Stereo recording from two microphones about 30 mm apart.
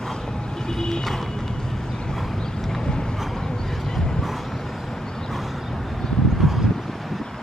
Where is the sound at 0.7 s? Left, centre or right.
Centre.